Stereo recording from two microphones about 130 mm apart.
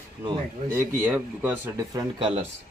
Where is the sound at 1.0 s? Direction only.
15° right (ahead or behind).